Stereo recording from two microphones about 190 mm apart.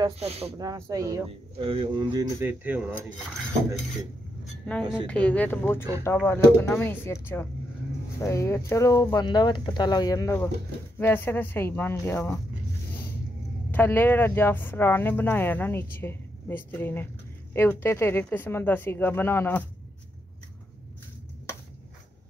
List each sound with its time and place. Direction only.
0.0 s speech: 30° right (ahead or behind)
0.6 s speech: 15° right (ahead or behind)
2.4 s cutlery: 10° right (ahead or behind)
5.0 s speech: 5° left (ahead or behind)
13.7 s speech: 10° left (ahead or behind)